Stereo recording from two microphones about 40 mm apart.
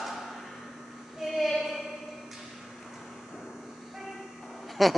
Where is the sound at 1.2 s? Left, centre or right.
Centre.